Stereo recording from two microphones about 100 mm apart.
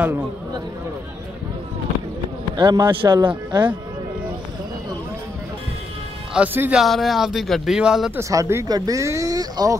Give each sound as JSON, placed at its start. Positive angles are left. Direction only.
{"t": 2.5, "sound": "speech", "side_deg": -50}
{"t": 6.3, "sound": "speech", "side_deg": -15}
{"t": 6.7, "sound": "speech", "side_deg": 0}
{"t": 8.2, "sound": "speech", "side_deg": -30}